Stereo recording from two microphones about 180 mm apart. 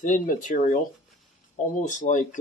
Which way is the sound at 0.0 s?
45° left (ahead or behind).